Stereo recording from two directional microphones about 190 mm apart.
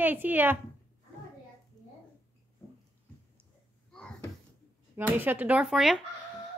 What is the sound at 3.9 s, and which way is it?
Cupboard open or close, 5° left (ahead or behind).